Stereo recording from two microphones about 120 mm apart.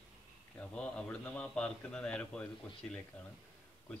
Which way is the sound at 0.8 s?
10° left (ahead or behind).